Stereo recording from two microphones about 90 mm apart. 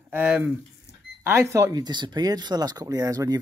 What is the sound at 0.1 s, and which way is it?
Speech, 20° right (ahead or behind).